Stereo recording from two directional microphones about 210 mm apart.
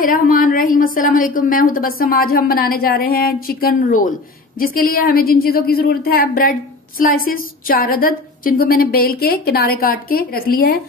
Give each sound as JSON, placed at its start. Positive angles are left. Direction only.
{"t": 0.0, "sound": "a woman's voice", "side_deg": 40}